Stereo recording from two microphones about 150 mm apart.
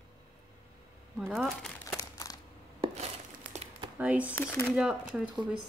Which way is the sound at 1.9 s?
25° left (ahead or behind).